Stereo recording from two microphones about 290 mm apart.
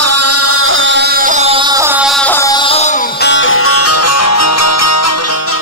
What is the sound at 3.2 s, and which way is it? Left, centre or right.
Music, left.